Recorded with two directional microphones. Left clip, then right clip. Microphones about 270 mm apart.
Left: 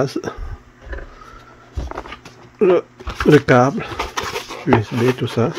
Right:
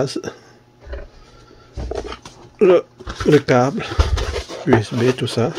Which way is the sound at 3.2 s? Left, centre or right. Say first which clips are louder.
Left 2 dB; centre.